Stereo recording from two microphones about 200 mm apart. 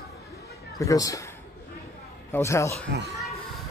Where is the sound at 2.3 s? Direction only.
15° left (ahead or behind).